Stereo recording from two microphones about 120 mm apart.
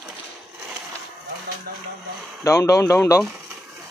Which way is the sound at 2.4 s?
25° left (ahead or behind).